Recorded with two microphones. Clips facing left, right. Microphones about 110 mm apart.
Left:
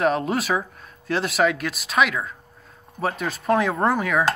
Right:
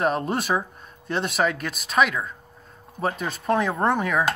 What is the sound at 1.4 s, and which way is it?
Speech, 40° right (ahead or behind).